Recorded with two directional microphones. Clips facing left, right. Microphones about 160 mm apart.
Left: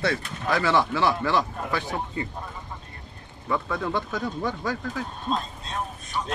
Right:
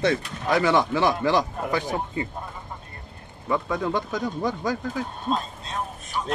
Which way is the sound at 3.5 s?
15° right (ahead or behind).